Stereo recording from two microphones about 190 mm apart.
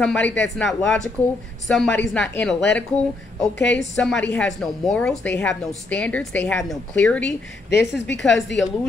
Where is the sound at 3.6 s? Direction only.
65° left (ahead or behind).